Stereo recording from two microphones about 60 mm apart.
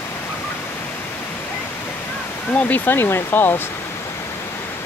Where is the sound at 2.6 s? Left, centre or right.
Left.